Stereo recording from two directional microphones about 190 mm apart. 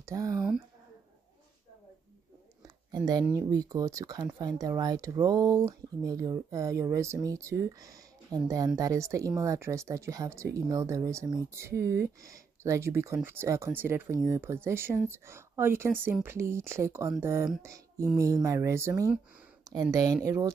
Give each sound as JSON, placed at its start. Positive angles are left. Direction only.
{"t": 0.0, "sound": "speech", "side_deg": -15}
{"t": 3.3, "sound": "speech", "side_deg": -20}